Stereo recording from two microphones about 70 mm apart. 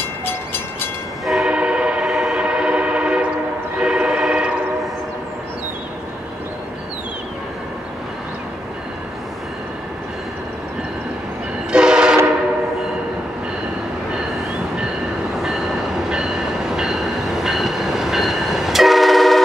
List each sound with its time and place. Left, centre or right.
0.0 s train: left
1.2 s train: centre
1.5 s train: centre
11.7 s train: centre
15.3 s train: centre